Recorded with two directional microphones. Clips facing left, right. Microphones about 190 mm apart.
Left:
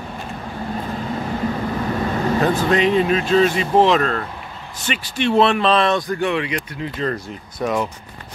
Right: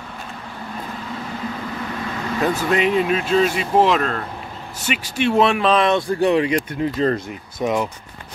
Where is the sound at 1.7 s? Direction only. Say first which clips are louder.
Left 6 dB; 40° left (ahead or behind).